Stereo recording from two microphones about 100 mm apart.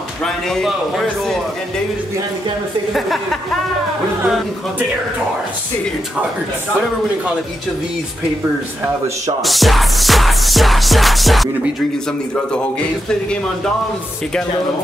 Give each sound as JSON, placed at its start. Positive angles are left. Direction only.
{"t": 0.2, "sound": "a man's voice", "side_deg": 5}
{"t": 2.9, "sound": "music", "side_deg": 0}
{"t": 9.4, "sound": "music", "side_deg": 0}